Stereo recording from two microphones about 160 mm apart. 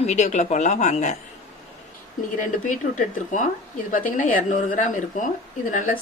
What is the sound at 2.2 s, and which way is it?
Speech, 55° left (ahead or behind).